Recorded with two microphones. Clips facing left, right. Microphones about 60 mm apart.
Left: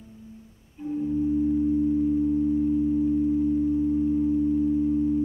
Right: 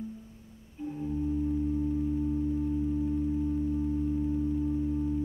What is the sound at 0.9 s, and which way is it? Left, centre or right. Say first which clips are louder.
Singing bowl: left 8 dB; centre.